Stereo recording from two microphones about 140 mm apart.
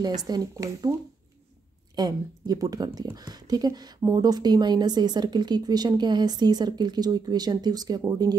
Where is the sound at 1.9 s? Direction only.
25° right (ahead or behind).